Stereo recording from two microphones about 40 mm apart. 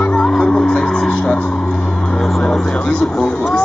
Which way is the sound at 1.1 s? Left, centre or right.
Left.